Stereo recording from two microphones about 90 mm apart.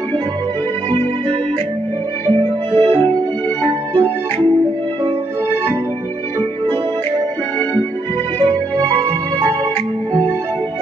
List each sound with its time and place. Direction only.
2.7 s music: 90° right